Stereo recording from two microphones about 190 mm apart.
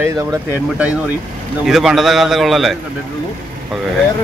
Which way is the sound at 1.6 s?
Centre (ahead or behind).